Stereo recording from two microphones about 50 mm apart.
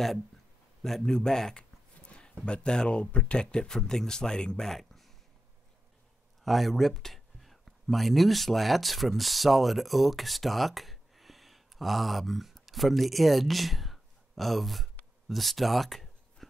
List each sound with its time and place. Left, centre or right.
1.0 s speech: centre
2.0 s a sound: left
2.4 s speech: centre
6.4 s speech: centre